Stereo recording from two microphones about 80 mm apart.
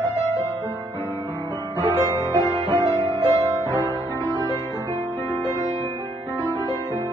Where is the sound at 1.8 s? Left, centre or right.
Right.